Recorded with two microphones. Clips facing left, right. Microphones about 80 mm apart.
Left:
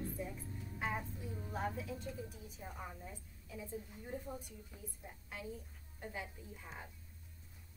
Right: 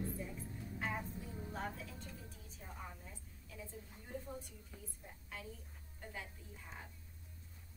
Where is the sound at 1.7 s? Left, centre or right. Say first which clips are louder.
Left 7 dB; centre.